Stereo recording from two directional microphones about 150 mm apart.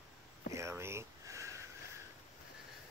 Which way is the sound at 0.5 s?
20° right (ahead or behind).